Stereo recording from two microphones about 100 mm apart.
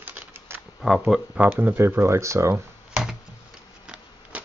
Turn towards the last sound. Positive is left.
turn(degrees=-10)  # may be behind; listen again after turning